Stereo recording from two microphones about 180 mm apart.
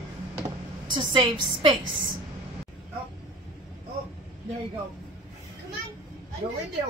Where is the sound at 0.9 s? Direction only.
25° right (ahead or behind).